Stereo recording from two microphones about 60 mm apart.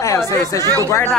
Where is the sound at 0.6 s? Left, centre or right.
Right.